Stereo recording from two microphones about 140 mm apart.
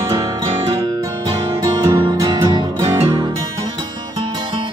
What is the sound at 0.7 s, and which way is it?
Music, 35° right (ahead or behind).